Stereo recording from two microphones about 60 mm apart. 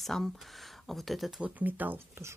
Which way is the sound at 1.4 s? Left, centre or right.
Right.